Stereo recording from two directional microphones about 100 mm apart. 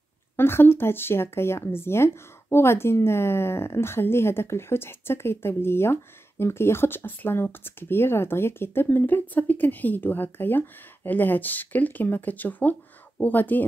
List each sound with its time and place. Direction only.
0.4 s speech: 20° left (ahead or behind)